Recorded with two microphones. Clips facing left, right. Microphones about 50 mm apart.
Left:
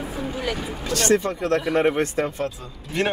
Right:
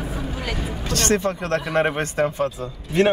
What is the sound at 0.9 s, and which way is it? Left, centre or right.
Speech, right.